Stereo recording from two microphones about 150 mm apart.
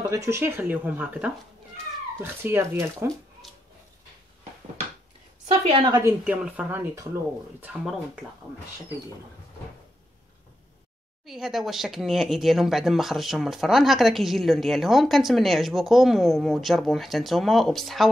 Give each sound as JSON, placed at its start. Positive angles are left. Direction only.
{"t": 0.1, "sound": "speech", "side_deg": -20}
{"t": 2.4, "sound": "speech", "side_deg": -15}
{"t": 3.4, "sound": "a sound", "side_deg": 0}
{"t": 5.5, "sound": "a woman's voice", "side_deg": -35}
{"t": 6.2, "sound": "speech", "side_deg": -10}
{"t": 11.2, "sound": "speech", "side_deg": -5}